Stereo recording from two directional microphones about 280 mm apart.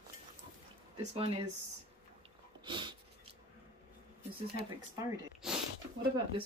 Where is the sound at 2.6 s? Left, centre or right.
Centre.